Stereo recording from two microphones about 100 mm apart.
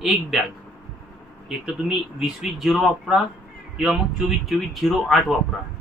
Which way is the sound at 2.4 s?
5° right (ahead or behind).